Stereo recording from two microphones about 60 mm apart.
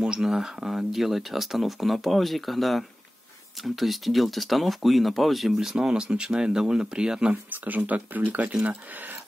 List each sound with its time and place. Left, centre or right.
0.0 s speech: centre
7.4 s speech: right